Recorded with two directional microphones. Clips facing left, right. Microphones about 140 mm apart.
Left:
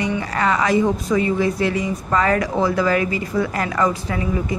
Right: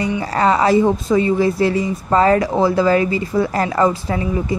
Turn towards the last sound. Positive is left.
turn(degrees=-30)  # may be behind; listen again after turning